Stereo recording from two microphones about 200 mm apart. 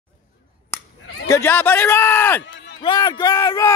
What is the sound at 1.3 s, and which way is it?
Speech, 10° left (ahead or behind).